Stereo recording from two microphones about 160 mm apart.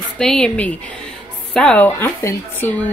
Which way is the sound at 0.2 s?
5° left (ahead or behind).